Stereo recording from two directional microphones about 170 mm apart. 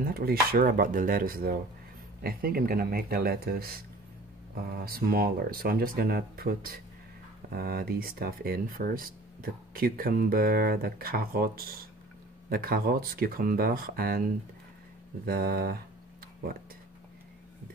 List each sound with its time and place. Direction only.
0.1 s speech: 60° right (ahead or behind)